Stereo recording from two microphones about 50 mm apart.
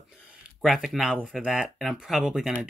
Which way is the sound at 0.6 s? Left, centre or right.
Centre.